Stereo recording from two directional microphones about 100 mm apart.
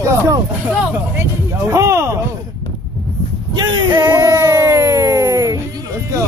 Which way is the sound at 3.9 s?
30° right (ahead or behind).